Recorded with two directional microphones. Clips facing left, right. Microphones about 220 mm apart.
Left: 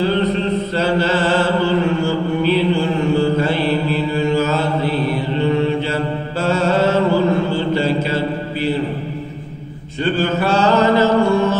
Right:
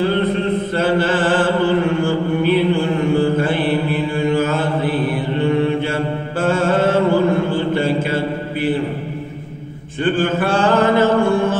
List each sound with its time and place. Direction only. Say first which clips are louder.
0.0 s chant: even; 50° right (ahead or behind)
6.4 s mantra: even; 50° right (ahead or behind)
10.0 s mantra: right 1 dB; 50° right (ahead or behind)